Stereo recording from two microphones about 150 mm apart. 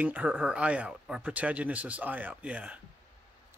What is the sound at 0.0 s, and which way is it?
Speech, 10° right (ahead or behind).